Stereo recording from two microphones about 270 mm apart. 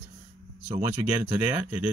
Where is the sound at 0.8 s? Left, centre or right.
Centre.